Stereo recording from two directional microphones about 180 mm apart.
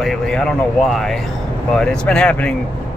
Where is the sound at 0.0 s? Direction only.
Centre (ahead or behind).